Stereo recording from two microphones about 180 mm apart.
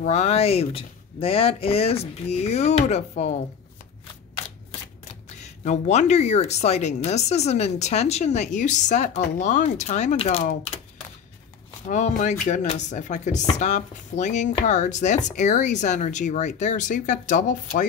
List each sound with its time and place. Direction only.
0.0 s speech: 40° left (ahead or behind)
5.4 s speech: 40° left (ahead or behind)
11.9 s speech: 40° left (ahead or behind)